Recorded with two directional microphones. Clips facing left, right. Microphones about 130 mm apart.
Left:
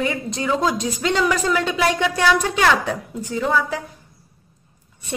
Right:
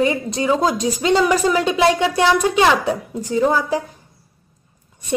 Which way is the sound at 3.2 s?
40° right (ahead or behind).